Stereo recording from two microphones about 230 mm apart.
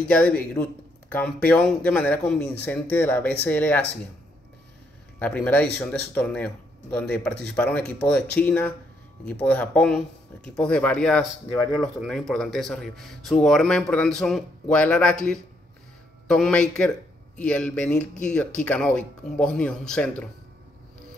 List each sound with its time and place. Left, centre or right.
0.1 s speech: centre
5.2 s speech: centre